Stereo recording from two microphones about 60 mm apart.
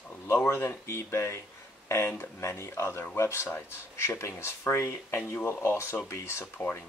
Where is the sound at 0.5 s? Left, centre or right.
Left.